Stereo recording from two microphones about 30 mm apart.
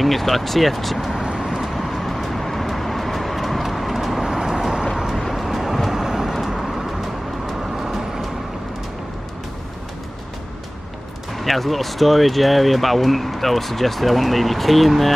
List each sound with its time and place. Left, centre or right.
0.0 s speech: centre
1.4 s vehicle: centre
6.3 s vehicle: centre
11.3 s speech: centre